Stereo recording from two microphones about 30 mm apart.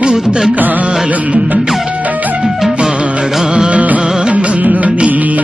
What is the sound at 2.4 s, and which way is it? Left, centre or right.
Music, centre.